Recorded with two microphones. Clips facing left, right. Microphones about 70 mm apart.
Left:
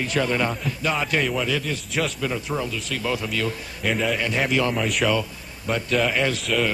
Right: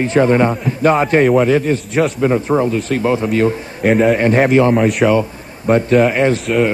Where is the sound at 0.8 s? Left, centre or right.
Right.